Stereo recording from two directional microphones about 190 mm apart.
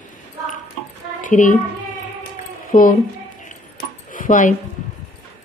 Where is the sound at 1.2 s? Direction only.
40° left (ahead or behind).